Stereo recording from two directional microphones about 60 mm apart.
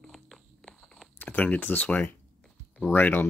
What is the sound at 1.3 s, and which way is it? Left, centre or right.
Speech, left.